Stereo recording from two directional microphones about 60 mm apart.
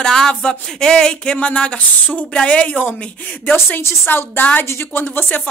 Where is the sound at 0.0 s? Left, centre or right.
Centre; by 3.5 s left.